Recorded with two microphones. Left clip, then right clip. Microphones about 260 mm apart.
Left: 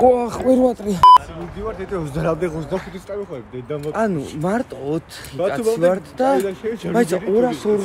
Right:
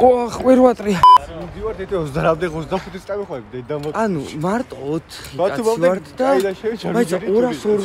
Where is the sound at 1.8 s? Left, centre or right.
Right.